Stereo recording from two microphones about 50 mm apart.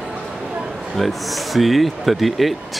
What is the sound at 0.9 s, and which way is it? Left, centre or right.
Speech, centre.